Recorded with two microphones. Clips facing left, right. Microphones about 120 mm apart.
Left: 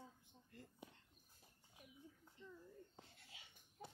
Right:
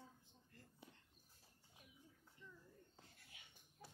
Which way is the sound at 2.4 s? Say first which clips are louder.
Left 5 dB; 25° left (ahead or behind).